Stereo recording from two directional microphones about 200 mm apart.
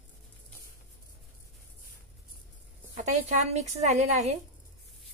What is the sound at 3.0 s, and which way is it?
Speech, 35° right (ahead or behind).